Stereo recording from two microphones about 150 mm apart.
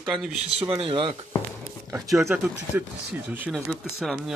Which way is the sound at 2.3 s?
10° right (ahead or behind).